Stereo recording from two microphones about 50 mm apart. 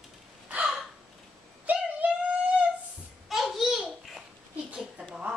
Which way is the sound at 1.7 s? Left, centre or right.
Right.